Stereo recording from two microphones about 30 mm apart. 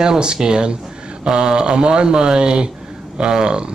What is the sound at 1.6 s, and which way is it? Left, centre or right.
Speech, right.